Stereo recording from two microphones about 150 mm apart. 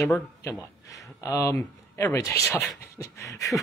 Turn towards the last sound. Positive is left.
turn(degrees=20)  # may be behind; listen again after turning